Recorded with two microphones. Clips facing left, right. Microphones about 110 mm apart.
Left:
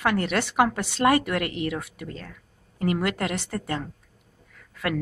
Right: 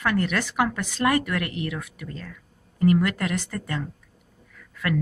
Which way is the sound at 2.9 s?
25° left (ahead or behind).